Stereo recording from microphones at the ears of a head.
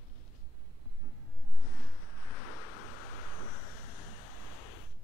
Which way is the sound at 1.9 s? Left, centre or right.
Left.